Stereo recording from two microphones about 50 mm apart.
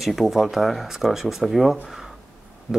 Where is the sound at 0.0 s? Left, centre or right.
Centre.